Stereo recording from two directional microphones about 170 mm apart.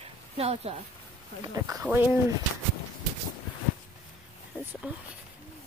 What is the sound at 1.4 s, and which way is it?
Speech, 20° right (ahead or behind).